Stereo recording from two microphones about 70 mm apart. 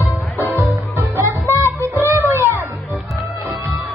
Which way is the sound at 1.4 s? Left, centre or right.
Left.